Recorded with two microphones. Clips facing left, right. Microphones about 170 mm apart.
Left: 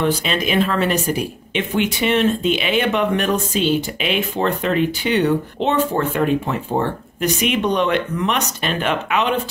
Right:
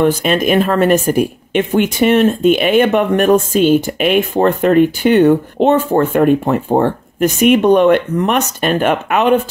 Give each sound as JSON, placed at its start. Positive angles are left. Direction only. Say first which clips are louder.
{"t": 0.0, "sound": "speech", "louder": "right 7 dB", "side_deg": -50}